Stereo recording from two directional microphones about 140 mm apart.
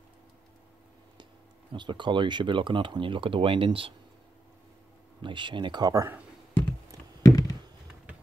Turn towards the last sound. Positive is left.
turn(degrees=25)  # may be behind; listen again after turning